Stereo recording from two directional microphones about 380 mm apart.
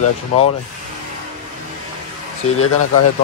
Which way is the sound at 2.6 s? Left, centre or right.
Left.